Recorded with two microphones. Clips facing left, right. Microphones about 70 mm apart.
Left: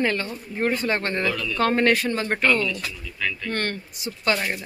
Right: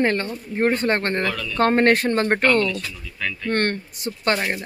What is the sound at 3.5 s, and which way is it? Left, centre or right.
Speech, right.